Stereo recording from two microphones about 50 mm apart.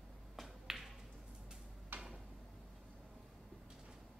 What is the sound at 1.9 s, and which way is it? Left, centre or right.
Drawer open or close, right.